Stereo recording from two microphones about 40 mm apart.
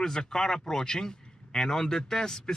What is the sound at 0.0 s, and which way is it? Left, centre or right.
A man's voice, centre.